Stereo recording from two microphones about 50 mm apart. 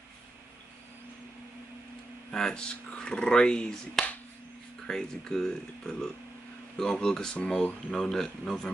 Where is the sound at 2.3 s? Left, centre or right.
Centre.